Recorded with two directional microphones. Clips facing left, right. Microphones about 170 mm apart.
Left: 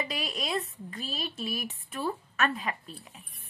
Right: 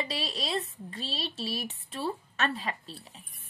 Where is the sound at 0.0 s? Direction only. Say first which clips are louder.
Even; 30° right (ahead or behind).